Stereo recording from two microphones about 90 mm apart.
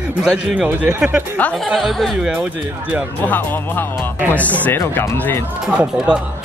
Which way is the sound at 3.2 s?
20° left (ahead or behind).